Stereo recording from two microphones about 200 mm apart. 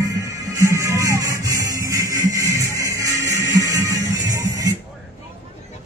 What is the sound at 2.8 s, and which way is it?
Music, 15° right (ahead or behind).